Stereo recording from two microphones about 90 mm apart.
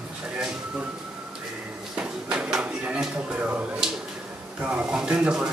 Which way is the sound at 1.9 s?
10° right (ahead or behind).